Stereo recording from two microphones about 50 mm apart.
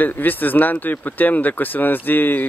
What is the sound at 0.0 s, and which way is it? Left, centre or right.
Speech, left.